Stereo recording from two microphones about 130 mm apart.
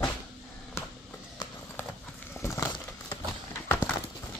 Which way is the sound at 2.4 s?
25° left (ahead or behind).